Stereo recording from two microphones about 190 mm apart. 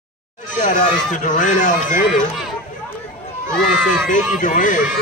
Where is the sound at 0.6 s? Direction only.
40° left (ahead or behind).